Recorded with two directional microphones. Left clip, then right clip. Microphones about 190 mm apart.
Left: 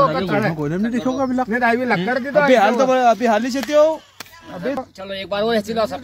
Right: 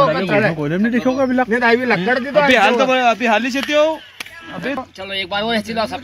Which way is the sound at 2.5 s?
85° left.